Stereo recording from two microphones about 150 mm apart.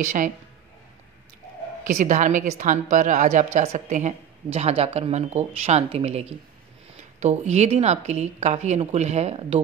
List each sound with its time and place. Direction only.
0.0 s a woman's voice: 60° right (ahead or behind)
1.9 s a woman's voice: 55° right (ahead or behind)